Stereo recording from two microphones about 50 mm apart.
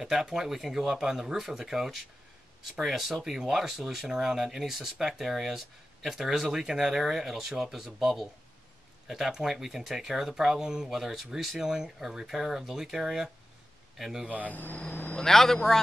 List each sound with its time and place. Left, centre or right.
0.0 s speech: centre
14.5 s speech: left
15.1 s speech: centre